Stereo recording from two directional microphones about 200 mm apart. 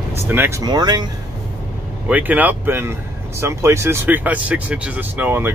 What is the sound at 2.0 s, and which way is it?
Speech, 10° right (ahead or behind).